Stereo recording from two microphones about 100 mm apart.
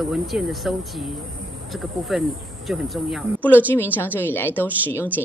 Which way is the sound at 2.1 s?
Centre (ahead or behind).